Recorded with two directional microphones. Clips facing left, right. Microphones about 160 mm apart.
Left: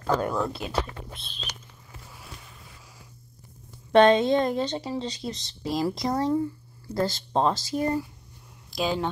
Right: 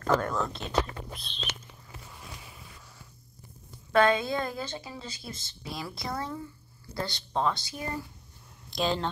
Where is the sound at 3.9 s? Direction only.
35° left (ahead or behind).